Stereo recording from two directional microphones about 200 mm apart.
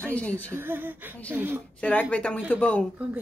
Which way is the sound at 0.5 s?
10° right (ahead or behind).